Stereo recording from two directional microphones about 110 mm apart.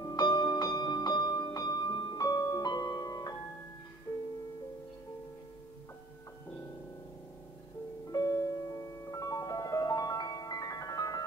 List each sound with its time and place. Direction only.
0.0 s music: 35° left (ahead or behind)
4.1 s music: 20° left (ahead or behind)
8.1 s music: 35° left (ahead or behind)